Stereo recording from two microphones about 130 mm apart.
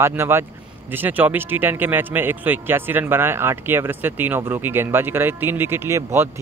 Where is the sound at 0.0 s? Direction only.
20° right (ahead or behind).